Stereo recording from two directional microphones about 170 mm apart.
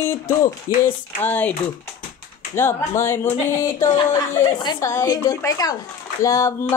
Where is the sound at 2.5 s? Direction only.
15° left (ahead or behind).